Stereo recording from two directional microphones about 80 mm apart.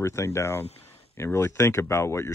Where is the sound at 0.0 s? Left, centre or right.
Left.